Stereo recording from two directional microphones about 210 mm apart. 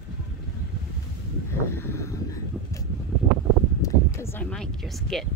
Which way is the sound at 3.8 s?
15° left (ahead or behind).